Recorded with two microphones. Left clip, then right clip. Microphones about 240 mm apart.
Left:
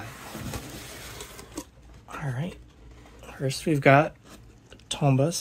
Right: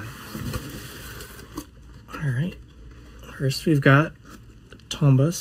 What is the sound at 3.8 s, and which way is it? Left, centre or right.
Speech, left.